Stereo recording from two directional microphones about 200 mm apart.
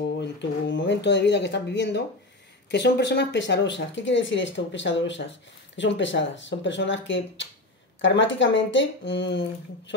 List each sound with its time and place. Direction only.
0.2 s speech: 65° left (ahead or behind)